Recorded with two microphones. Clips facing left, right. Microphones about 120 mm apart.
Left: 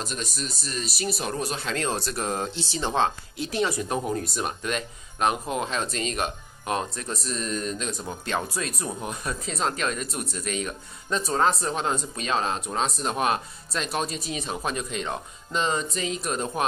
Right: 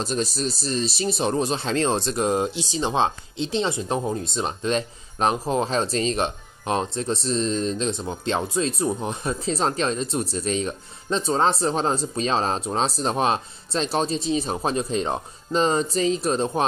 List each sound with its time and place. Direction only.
0.0 s speech: 30° right (ahead or behind)